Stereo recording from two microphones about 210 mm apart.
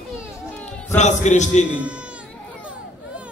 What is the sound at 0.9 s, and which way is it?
Speech, 35° left (ahead or behind).